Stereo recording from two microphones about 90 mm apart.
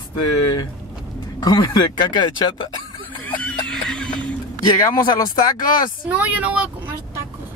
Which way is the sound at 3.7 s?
10° left (ahead or behind).